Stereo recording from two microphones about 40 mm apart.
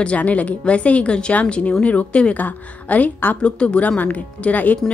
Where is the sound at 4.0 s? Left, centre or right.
Left.